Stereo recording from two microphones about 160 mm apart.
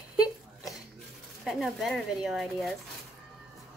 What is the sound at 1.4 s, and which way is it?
Speech, centre (ahead or behind).